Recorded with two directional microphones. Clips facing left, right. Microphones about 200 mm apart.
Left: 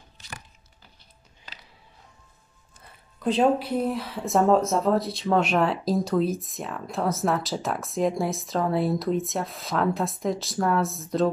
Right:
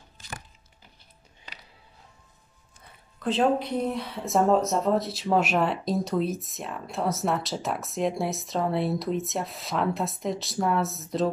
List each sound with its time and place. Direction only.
3.2 s speech: 10° left (ahead or behind)